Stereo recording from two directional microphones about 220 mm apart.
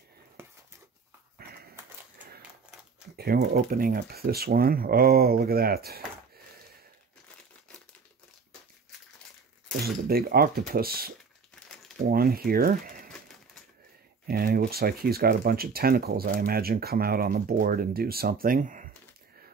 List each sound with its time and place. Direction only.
0.4 s a sound: 10° right (ahead or behind)
3.2 s speech: 45° right (ahead or behind)
9.8 s speech: 45° right (ahead or behind)
14.2 s speech: 45° right (ahead or behind)